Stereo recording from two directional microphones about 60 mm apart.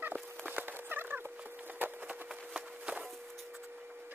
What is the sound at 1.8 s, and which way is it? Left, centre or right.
Wood, right.